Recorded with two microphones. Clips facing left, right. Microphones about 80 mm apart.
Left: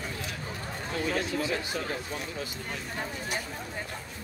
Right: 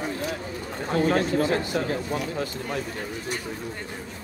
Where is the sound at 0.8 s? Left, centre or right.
Right.